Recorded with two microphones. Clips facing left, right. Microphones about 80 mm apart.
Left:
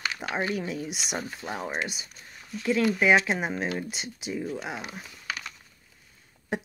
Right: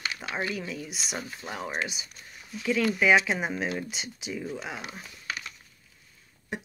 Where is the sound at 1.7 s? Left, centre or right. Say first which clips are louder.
Left 1 dB; centre.